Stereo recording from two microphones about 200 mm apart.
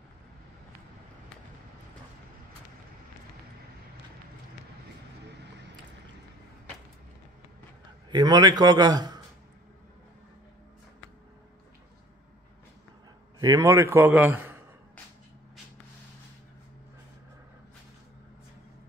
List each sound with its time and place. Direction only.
8.1 s a man's voice: 20° right (ahead or behind)
13.4 s a man's voice: 15° right (ahead or behind)